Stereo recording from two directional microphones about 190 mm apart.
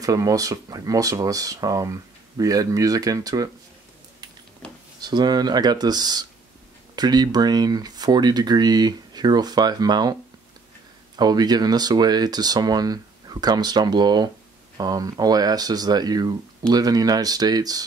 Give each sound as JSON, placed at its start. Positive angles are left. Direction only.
{"t": 0.0, "sound": "speech", "side_deg": -20}
{"t": 4.6, "sound": "drawer open or close", "side_deg": 5}
{"t": 5.0, "sound": "speech", "side_deg": -20}
{"t": 11.1, "sound": "speech", "side_deg": -20}